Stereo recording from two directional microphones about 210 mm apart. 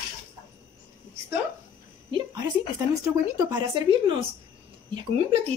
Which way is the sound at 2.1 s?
20° right (ahead or behind).